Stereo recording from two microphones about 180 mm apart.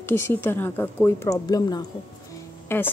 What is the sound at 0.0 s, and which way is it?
Speech, 10° left (ahead or behind).